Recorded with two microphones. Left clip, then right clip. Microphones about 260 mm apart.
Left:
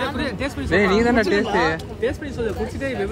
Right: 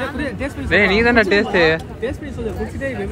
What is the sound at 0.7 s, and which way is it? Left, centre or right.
Speech, centre.